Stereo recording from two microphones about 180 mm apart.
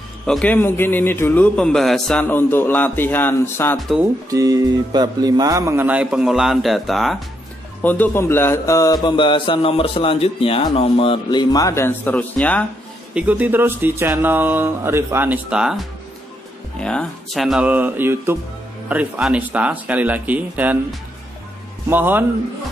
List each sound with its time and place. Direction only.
0.3 s a man's voice: 10° left (ahead or behind)
4.3 s a man's voice: 20° right (ahead or behind); by 12.6 s 5° left (ahead or behind)
13.1 s speech: 10° right (ahead or behind)
21.8 s speech: 10° right (ahead or behind)